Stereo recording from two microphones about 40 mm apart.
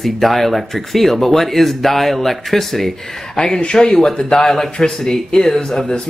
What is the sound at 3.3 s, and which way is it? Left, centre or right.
Speech, centre.